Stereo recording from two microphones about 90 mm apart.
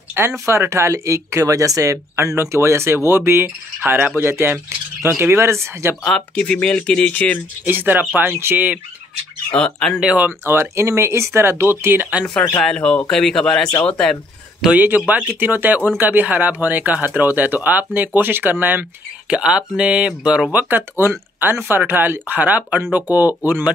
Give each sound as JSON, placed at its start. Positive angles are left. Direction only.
{"t": 0.2, "sound": "speech", "side_deg": -25}
{"t": 6.0, "sound": "speech", "side_deg": 10}
{"t": 7.6, "sound": "speech", "side_deg": -20}
{"t": 9.5, "sound": "speech", "side_deg": 10}
{"t": 9.9, "sound": "speech", "side_deg": -15}
{"t": 12.6, "sound": "speech", "side_deg": 10}
{"t": 14.8, "sound": "speech", "side_deg": -20}
{"t": 21.0, "sound": "speech", "side_deg": -25}